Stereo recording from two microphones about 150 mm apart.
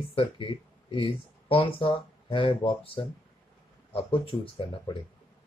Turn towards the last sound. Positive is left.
turn(degrees=35)  # may be behind; listen again after turning